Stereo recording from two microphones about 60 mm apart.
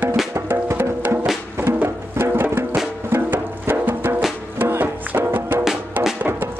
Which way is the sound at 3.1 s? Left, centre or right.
Right.